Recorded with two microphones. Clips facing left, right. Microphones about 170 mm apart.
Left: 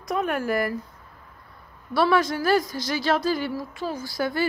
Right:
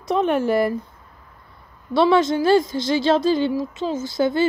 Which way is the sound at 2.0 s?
25° right (ahead or behind).